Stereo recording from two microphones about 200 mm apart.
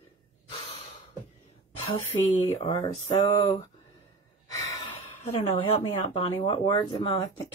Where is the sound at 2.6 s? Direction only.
20° left (ahead or behind).